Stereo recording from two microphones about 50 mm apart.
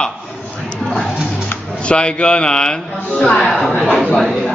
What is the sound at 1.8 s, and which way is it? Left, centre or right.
A man's voice, left.